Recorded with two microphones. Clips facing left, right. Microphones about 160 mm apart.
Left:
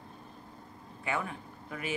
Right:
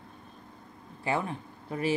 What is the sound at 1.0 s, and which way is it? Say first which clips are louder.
Speech: right 4 dB; 30° right (ahead or behind).